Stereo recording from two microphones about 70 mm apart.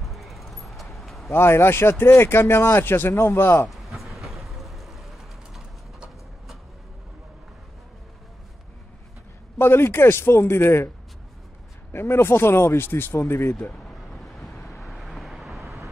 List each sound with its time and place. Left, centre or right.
0.0 s vehicle: centre
1.3 s speech: left
3.6 s a sound: centre
9.6 s speech: left
11.9 s speech: left
13.8 s vehicle: centre